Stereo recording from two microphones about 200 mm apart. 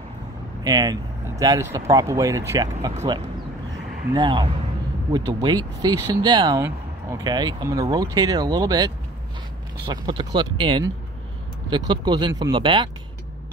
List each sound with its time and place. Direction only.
0.7 s speech: 20° right (ahead or behind)
4.1 s speech: 25° right (ahead or behind)